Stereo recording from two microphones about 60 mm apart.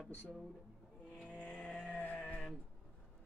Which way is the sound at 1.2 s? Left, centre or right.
Centre.